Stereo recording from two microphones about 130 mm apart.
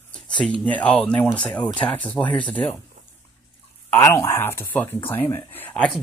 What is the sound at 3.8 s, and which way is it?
Speech, 20° left (ahead or behind).